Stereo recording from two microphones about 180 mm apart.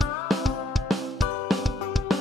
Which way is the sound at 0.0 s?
Centre (ahead or behind).